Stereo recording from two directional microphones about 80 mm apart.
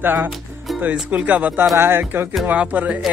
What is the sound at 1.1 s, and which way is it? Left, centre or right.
Speech, centre.